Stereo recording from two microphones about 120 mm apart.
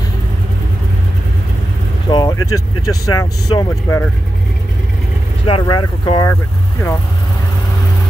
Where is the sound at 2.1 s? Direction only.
35° left (ahead or behind).